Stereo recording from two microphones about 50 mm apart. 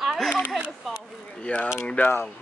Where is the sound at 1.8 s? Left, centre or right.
Left.